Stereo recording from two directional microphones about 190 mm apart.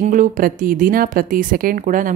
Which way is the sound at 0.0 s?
40° right (ahead or behind).